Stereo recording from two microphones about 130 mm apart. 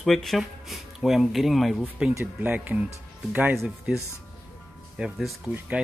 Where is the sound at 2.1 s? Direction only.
20° right (ahead or behind).